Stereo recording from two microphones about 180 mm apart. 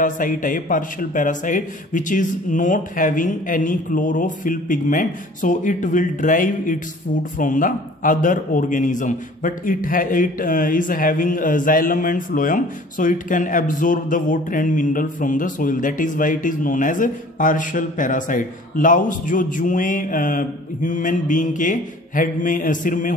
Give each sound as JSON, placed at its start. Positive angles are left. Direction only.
{"t": 0.0, "sound": "a man's voice", "side_deg": 45}